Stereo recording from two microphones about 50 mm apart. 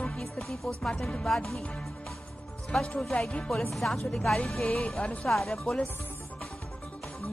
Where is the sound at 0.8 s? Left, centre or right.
Centre.